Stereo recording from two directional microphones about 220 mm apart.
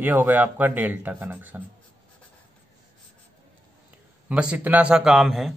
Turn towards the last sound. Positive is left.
turn(degrees=0)  # may be behind; listen again after turning